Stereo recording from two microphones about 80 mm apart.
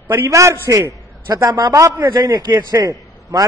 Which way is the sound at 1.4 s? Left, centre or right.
Right.